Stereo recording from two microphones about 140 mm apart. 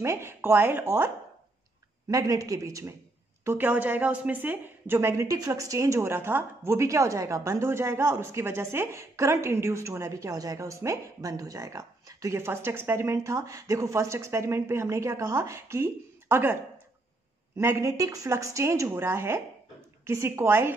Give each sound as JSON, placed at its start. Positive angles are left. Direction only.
{"t": 0.0, "sound": "a woman's voice", "side_deg": -20}
{"t": 17.6, "sound": "a woman's voice", "side_deg": -20}